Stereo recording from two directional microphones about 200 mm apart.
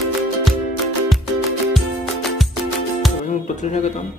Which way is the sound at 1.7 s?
Centre (ahead or behind).